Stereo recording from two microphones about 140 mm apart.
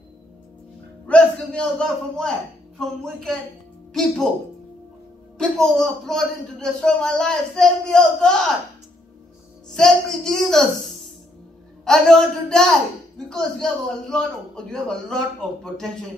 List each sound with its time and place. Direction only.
1.0 s a man's voice: 10° left (ahead or behind)
5.4 s a man's voice: 5° left (ahead or behind)
9.7 s a man's voice: 5° left (ahead or behind)
11.8 s a man's voice: 5° left (ahead or behind)